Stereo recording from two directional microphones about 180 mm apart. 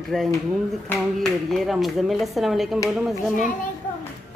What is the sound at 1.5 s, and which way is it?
Speech, centre (ahead or behind).